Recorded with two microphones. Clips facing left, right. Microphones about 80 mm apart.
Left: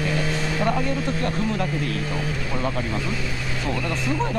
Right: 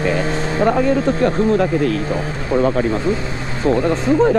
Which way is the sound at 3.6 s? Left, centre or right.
Right.